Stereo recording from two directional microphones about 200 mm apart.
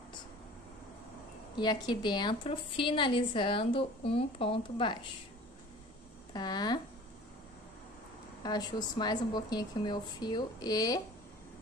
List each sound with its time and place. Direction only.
1.6 s a woman's voice: 20° left (ahead or behind)
6.3 s a woman's voice: 20° left (ahead or behind)
8.4 s a woman's voice: 20° left (ahead or behind)